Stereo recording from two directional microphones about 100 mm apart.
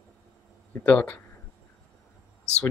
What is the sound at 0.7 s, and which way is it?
Speech, 10° left (ahead or behind).